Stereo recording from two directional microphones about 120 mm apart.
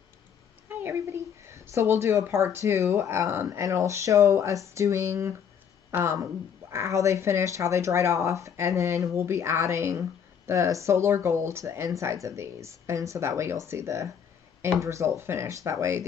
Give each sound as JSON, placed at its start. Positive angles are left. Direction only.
{"t": 0.7, "sound": "speech", "side_deg": -20}